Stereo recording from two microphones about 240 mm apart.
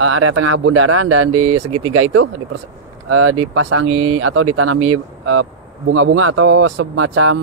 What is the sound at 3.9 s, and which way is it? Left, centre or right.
Speech, right.